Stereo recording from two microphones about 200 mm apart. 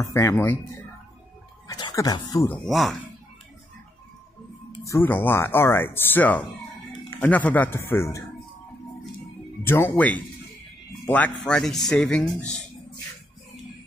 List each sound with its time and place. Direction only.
0.0 s speech: 15° left (ahead or behind)
1.7 s speech: 20° left (ahead or behind)
2.6 s speech: centre (ahead or behind)
4.8 s speech: 10° left (ahead or behind)
9.6 s speech: 10° left (ahead or behind)